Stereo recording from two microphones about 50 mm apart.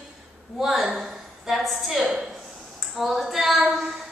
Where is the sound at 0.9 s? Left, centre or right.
Centre.